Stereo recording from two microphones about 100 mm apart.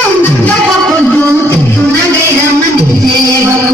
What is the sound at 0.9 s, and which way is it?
Music, 15° left (ahead or behind).